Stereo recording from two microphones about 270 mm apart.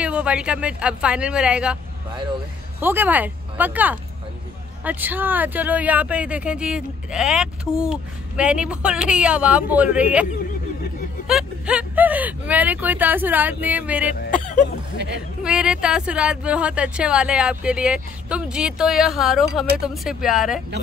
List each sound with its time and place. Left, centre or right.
0.0 s speech: centre
2.8 s speech: centre
11.2 s speech: centre
14.3 s speech: left
15.4 s speech: centre